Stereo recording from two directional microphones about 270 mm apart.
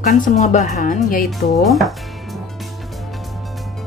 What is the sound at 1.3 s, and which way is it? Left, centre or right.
Speech, centre.